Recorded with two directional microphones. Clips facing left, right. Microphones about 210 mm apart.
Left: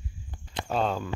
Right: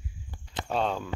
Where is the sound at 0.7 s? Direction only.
Centre (ahead or behind).